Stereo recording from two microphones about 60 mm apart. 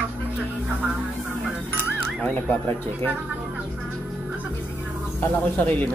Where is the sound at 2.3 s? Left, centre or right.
Left.